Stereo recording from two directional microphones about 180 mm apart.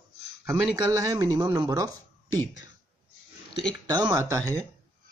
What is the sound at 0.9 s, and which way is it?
Speech, 15° right (ahead or behind).